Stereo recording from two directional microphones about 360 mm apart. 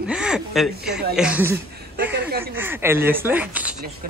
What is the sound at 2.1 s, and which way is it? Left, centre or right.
Speech, right.